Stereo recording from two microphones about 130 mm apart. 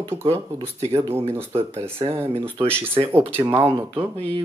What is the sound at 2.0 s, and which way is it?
Speech, 35° right (ahead or behind).